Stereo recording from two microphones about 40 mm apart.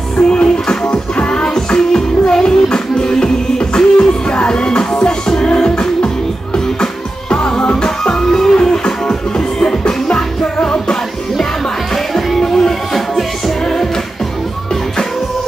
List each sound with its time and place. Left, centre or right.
0.3 s music: left
1.4 s music: centre
11.9 s music: centre